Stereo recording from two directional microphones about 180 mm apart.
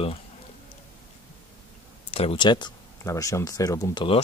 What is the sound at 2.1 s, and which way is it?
Speech, 30° left (ahead or behind).